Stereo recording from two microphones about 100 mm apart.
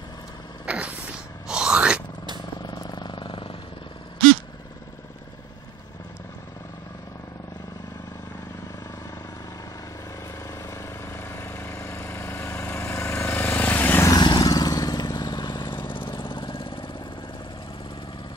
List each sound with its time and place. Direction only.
0.7 s throat clearing: 10° right (ahead or behind)
1.5 s a sound: 10° right (ahead or behind)
2.6 s vehicle: 45° left (ahead or behind)
10.7 s vehicle: 25° left (ahead or behind)
14.0 s vehicle: 45° left (ahead or behind); by 16.9 s 60° left (ahead or behind)